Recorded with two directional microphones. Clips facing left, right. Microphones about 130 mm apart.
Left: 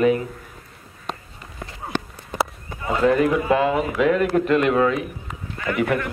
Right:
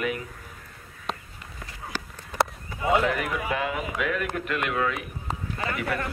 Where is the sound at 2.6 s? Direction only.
35° left (ahead or behind).